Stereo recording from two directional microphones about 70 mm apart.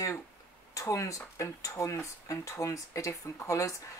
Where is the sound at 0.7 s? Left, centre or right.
Left.